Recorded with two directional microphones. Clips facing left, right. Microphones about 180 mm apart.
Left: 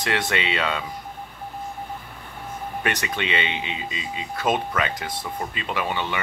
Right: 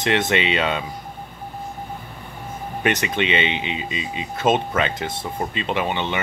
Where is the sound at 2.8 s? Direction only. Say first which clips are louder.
Right 6 dB; 20° right (ahead or behind).